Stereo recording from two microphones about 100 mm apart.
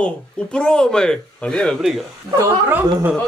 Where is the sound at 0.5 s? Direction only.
10° left (ahead or behind).